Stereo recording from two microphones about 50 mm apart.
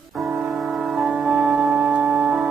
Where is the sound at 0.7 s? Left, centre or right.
Centre.